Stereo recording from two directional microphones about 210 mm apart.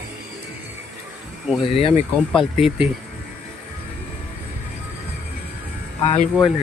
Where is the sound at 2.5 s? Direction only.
5° right (ahead or behind).